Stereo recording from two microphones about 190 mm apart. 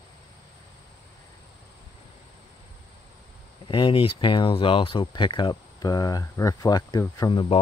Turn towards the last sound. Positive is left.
turn(degrees=25)  # may be behind; listen again after turning